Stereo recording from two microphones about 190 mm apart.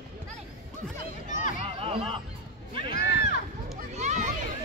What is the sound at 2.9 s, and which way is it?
Run, 55° left (ahead or behind).